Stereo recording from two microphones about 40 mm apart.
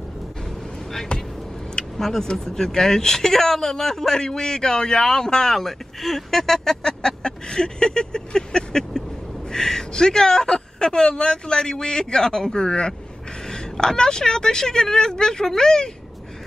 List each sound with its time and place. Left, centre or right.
1.8 s vehicle: centre
2.2 s speech: centre